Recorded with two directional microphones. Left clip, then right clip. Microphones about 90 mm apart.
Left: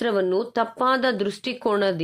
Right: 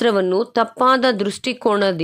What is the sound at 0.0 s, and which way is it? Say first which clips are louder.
A woman's voice: right 5 dB; 50° right (ahead or behind).